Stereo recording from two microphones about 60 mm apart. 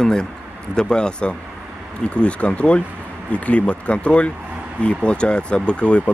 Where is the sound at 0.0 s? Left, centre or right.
Centre.